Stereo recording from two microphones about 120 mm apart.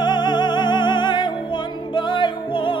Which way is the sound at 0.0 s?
35° left (ahead or behind).